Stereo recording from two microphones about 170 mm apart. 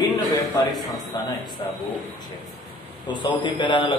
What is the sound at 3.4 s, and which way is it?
Speech, 25° left (ahead or behind).